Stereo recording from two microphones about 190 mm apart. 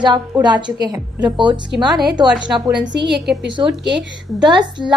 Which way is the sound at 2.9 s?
65° right (ahead or behind).